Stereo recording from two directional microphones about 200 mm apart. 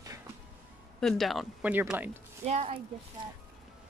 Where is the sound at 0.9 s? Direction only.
Centre (ahead or behind).